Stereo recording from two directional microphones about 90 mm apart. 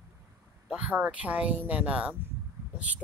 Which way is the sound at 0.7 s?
15° right (ahead or behind).